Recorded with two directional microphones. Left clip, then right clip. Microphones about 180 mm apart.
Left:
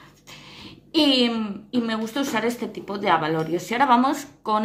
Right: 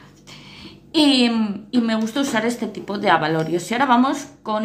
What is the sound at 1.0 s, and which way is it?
A woman's voice, 5° left (ahead or behind).